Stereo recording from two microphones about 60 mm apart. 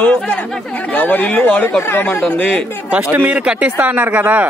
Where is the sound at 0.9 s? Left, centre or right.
Left.